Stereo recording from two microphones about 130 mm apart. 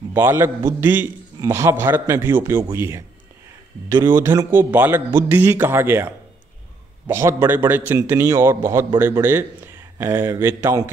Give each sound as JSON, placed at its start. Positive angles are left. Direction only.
{"t": 0.1, "sound": "a man's voice", "side_deg": -20}